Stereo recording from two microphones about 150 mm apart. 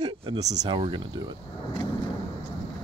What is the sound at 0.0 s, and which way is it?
Speech, 30° right (ahead or behind).